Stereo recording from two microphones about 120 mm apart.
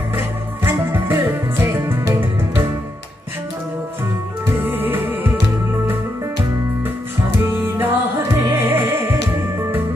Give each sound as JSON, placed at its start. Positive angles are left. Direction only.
{"t": 0.7, "sound": "music", "side_deg": -20}
{"t": 4.6, "sound": "music", "side_deg": -15}
{"t": 7.6, "sound": "music", "side_deg": -20}